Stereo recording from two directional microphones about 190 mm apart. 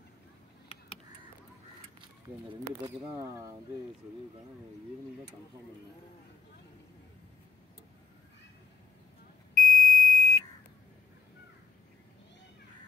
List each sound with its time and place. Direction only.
3.2 s speech: 15° right (ahead or behind)
9.6 s smoke detector: 45° right (ahead or behind)